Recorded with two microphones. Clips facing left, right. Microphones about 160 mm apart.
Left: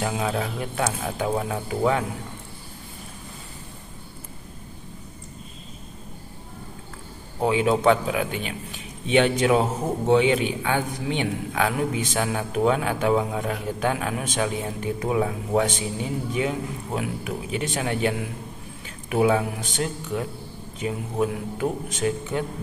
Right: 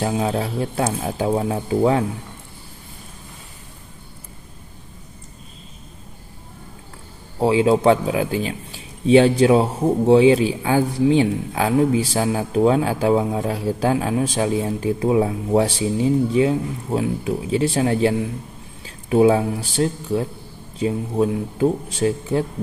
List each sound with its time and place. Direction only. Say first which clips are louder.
0.0 s speech: right 4 dB; 30° right (ahead or behind)
7.3 s speech: right 5 dB; 30° right (ahead or behind)